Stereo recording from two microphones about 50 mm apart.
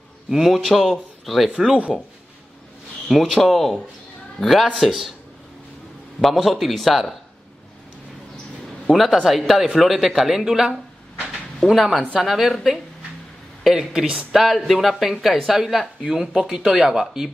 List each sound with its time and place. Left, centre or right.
0.3 s speech: centre
1.9 s speech: left
3.1 s speech: centre
6.2 s speech: centre
8.9 s speech: centre